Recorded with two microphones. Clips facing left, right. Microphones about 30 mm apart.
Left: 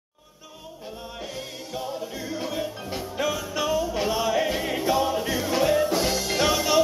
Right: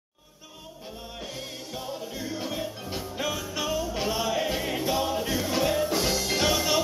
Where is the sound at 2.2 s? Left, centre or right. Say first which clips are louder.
Left 2 dB; centre.